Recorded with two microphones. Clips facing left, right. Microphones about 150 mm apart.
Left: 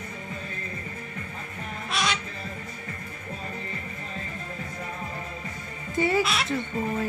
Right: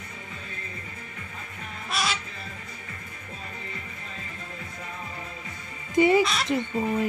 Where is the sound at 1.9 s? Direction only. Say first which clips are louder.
Left 1 dB; 5° right (ahead or behind).